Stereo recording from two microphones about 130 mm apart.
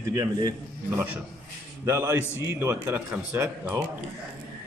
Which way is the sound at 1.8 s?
20° right (ahead or behind).